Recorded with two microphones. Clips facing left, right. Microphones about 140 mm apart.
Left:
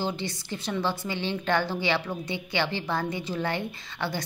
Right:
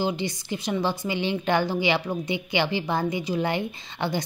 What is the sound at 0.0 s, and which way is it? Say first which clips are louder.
A woman's voice: right 4 dB; 15° right (ahead or behind).